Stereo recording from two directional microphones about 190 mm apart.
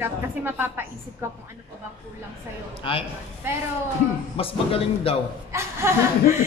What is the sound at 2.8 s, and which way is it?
Female singing, 30° left (ahead or behind).